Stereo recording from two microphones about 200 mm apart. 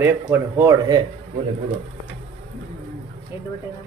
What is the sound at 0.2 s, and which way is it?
Speech, 15° right (ahead or behind).